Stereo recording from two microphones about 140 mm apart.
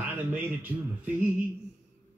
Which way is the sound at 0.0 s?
10° right (ahead or behind).